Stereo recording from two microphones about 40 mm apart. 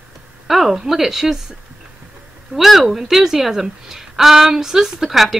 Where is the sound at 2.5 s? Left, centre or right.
Centre.